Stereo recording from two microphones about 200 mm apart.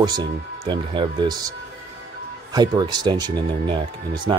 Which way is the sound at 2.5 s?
20° right (ahead or behind).